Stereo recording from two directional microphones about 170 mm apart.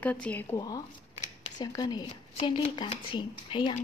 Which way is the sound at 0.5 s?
20° left (ahead or behind).